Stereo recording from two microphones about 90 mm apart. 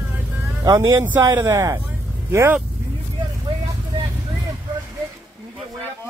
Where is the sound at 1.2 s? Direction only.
30° right (ahead or behind).